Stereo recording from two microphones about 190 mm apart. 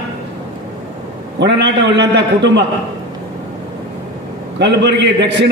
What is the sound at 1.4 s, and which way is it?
A man's voice, 65° right (ahead or behind).